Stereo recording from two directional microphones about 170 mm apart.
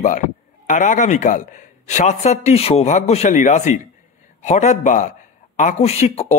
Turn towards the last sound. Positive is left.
turn(degrees=40)  # may be behind; listen again after turning